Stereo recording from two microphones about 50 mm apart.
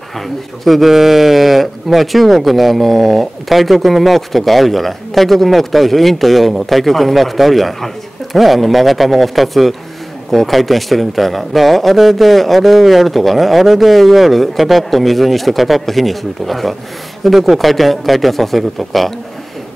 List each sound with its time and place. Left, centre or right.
0.7 s speech: centre